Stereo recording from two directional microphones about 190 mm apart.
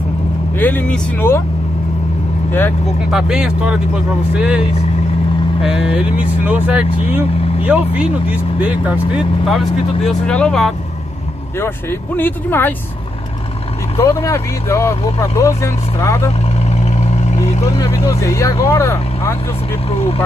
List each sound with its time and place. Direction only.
0.6 s speech: 10° left (ahead or behind)
3.1 s speech: 5° right (ahead or behind)
10.0 s speech: 5° left (ahead or behind)
13.9 s speech: 15° left (ahead or behind)
16.8 s vehicle: 35° left (ahead or behind)
17.6 s speech: 15° left (ahead or behind)